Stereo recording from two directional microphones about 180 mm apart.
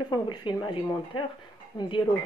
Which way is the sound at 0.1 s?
25° left (ahead or behind).